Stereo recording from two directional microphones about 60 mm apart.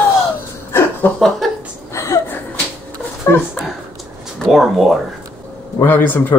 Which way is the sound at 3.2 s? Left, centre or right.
Left.